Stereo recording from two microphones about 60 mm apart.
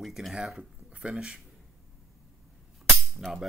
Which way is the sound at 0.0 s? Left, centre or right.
Centre.